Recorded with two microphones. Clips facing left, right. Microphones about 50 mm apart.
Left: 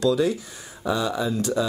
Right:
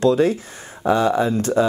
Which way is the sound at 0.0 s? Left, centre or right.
Right.